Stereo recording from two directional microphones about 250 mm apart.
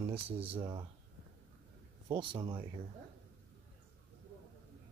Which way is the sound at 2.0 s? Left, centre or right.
Centre.